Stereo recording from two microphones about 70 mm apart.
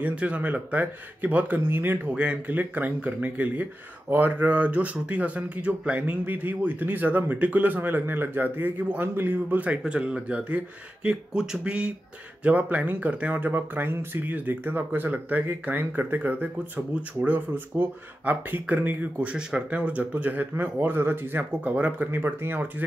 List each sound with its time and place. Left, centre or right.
0.0 s speech: centre
2.0 s speech: centre